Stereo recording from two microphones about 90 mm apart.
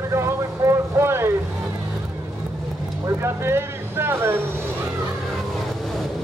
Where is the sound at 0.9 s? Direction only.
30° right (ahead or behind).